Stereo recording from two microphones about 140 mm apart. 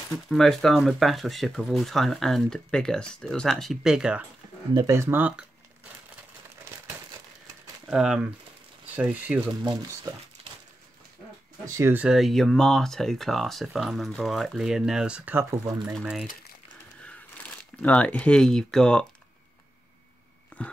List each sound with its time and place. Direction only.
0.3 s speech: centre (ahead or behind)
4.7 s speech: 20° right (ahead or behind)
7.8 s speech: 5° right (ahead or behind)
9.6 s speech: 25° right (ahead or behind)
11.6 s speech: 20° right (ahead or behind)
15.8 s speech: 5° right (ahead or behind)
17.8 s speech: 10° left (ahead or behind)
20.5 s a sound: 10° left (ahead or behind)